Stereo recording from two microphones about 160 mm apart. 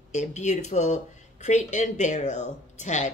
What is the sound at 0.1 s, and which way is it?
Speech, 45° left (ahead or behind).